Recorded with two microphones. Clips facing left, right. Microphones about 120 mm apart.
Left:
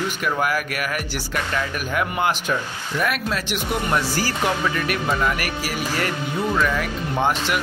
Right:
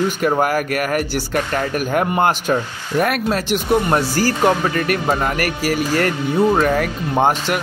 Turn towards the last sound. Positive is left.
turn(degrees=-45)  # may be behind; listen again after turning